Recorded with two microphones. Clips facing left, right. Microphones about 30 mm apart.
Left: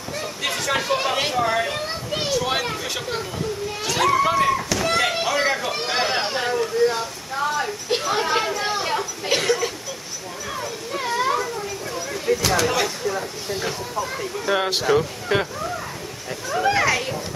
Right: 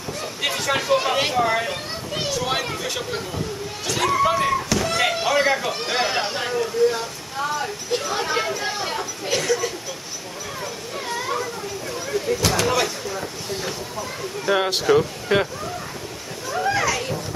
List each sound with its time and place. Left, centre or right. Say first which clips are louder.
0.5 s speech: right 2 dB; centre
2.3 s a sound: left 2 dB; centre
2.8 s speech: even; centre
4.9 s slam: right 2 dB; centre
5.7 s speech: even; centre
8.0 s speech: left 3 dB; left
9.3 s a sound: left 1 dB; left
10.9 s a sound: left 5 dB; left
12.4 s speech: right 1 dB; centre
13.9 s speech: left 3 dB; centre
16.6 s children playing: left 3 dB; left